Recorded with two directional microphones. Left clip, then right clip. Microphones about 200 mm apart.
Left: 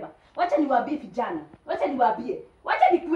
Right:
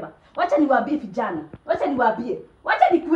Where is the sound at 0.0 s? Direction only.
5° right (ahead or behind).